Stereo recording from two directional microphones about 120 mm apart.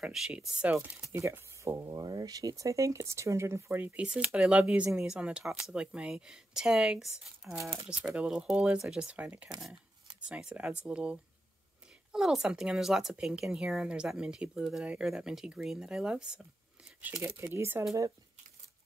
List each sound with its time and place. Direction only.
0.0 s speech: 5° right (ahead or behind)
0.7 s speech: 25° right (ahead or behind); by 7.5 s 5° right (ahead or behind)
7.5 s speech: 25° right (ahead or behind)
7.9 s speech: 10° right (ahead or behind)
17.2 s speech: 25° right (ahead or behind)